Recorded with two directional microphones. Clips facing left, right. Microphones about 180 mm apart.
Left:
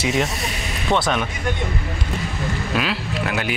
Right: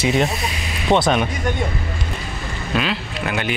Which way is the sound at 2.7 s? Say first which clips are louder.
Right 3 dB; 5° left (ahead or behind).